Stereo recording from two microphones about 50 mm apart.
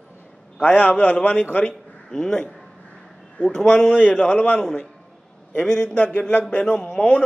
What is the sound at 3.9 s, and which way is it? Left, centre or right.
Speech, left.